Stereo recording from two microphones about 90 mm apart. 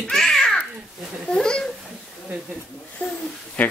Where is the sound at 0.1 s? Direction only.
5° left (ahead or behind).